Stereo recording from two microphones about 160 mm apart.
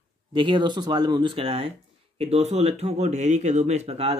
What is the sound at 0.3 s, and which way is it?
Speech, 30° right (ahead or behind).